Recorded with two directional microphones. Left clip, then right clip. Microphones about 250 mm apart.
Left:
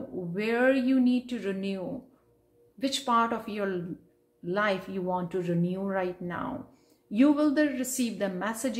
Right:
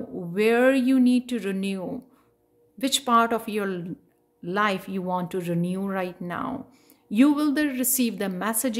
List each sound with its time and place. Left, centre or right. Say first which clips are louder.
0.3 s speech: right 6 dB; right